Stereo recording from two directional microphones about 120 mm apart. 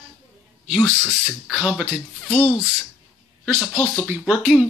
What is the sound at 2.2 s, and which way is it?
Speech, 15° left (ahead or behind).